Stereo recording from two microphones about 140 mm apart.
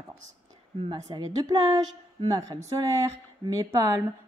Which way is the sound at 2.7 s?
35° right (ahead or behind).